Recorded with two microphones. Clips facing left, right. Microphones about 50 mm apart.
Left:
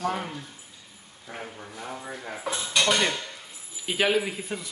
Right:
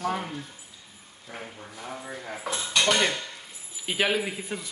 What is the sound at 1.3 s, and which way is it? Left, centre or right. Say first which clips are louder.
Speech: left 2 dB; centre.